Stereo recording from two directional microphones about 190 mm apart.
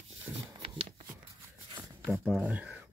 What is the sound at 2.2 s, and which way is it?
Speech, 5° right (ahead or behind).